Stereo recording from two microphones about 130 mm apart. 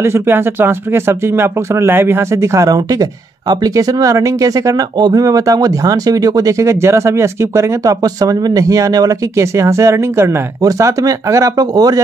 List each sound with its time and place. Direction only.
0.0 s speech: 20° right (ahead or behind)